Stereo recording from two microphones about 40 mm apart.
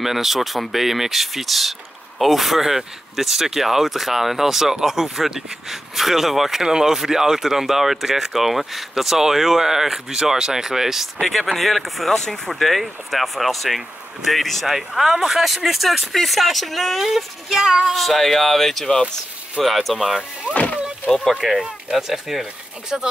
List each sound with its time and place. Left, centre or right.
0.0 s speech: centre
11.1 s speech: centre
14.7 s speech: centre
17.0 s speech: centre
17.9 s speech: centre
20.5 s speech: left
21.1 s speech: centre
21.9 s speech: centre